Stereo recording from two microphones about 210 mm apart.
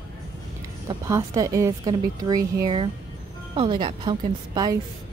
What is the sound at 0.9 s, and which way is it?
A woman's voice, 15° right (ahead or behind).